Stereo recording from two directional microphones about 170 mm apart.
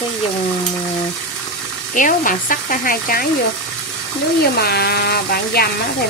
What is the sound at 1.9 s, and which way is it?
Speech, 50° left (ahead or behind).